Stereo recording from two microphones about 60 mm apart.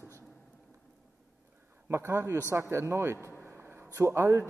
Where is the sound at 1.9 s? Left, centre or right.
Right.